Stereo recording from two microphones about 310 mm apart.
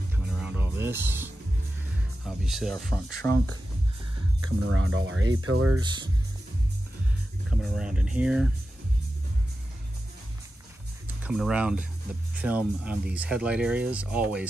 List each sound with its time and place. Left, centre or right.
0.1 s music: centre
2.2 s speech: centre
4.4 s speech: right
7.4 s speech: centre
11.2 s speech: centre